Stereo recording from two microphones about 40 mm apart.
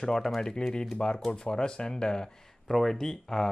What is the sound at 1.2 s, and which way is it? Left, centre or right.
Speech, centre.